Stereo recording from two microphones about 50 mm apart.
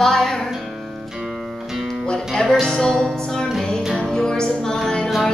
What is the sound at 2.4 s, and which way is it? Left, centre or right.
Music, centre.